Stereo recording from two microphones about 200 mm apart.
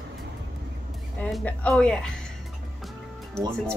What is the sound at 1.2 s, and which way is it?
Speech, 5° left (ahead or behind).